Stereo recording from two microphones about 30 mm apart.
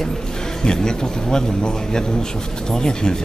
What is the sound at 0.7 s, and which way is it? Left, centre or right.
A woman's voice, left.